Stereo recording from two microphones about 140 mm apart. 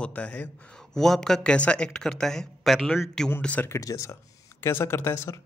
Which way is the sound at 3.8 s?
25° left (ahead or behind).